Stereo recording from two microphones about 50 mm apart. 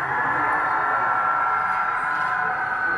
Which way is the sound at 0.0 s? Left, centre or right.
Centre.